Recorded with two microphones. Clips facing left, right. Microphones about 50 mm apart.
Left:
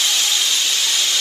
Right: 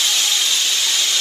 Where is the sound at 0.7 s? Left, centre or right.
Right.